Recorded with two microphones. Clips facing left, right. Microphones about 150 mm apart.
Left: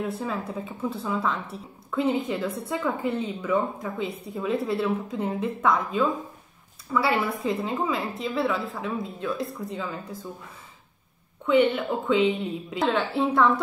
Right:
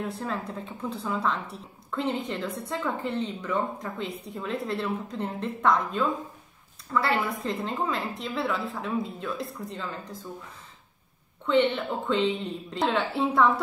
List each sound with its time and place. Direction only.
0.0 s speech: centre (ahead or behind)
11.4 s speech: 5° left (ahead or behind)